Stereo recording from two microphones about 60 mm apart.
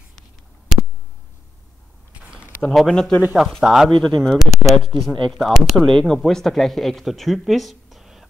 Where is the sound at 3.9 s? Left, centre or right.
Centre.